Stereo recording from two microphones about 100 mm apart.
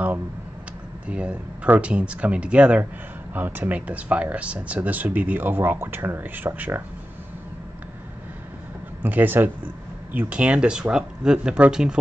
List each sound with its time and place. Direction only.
1.0 s speech: 10° right (ahead or behind)
9.0 s speech: 20° right (ahead or behind)